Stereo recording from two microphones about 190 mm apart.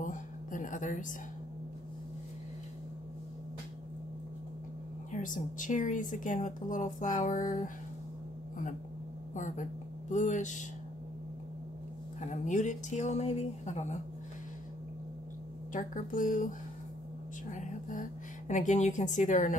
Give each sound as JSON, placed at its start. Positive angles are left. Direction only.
{"t": 0.0, "sound": "a sound", "side_deg": 40}
{"t": 5.1, "sound": "a woman's voice", "side_deg": 45}
{"t": 9.3, "sound": "speech", "side_deg": 40}
{"t": 12.2, "sound": "speech", "side_deg": 40}
{"t": 15.7, "sound": "a woman's voice", "side_deg": 45}
{"t": 17.5, "sound": "music", "side_deg": 45}
{"t": 18.5, "sound": "speech", "side_deg": 40}